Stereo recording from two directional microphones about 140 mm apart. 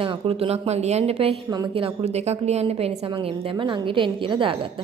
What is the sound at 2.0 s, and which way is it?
Speech, 50° right (ahead or behind).